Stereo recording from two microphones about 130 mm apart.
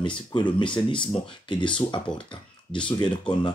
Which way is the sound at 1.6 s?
10° left (ahead or behind).